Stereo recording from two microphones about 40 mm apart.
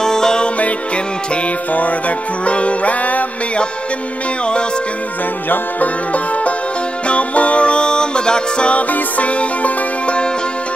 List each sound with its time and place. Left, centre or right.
0.0 s music: centre
1.7 s music: left
5.5 s music: left
8.9 s music: left